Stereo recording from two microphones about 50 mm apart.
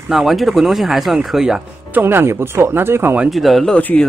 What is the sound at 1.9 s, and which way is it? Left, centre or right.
Speech, right.